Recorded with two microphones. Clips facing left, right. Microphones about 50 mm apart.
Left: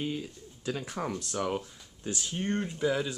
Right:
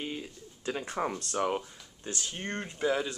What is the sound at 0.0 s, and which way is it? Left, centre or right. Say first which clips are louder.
Bird: left 3 dB; centre.